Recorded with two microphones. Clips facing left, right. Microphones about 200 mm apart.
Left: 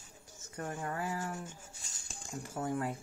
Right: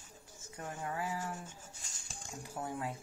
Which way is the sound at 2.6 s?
50° left (ahead or behind).